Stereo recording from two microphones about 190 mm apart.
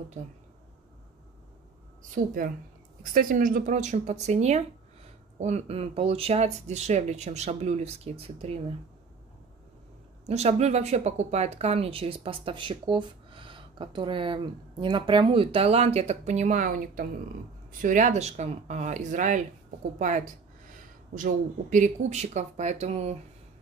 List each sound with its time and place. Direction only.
2.2 s speech: 45° right (ahead or behind)
10.2 s speech: 35° right (ahead or behind)